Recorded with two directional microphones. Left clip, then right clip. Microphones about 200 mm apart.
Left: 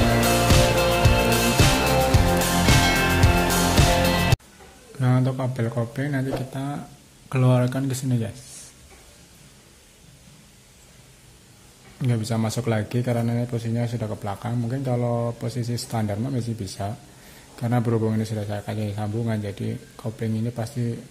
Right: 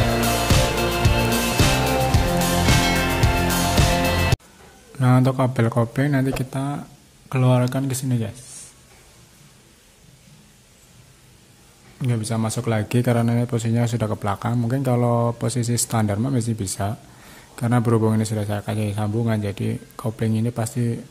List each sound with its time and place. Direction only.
0.0 s music: centre (ahead or behind)
4.9 s speech: 15° right (ahead or behind)
12.0 s speech: 5° right (ahead or behind)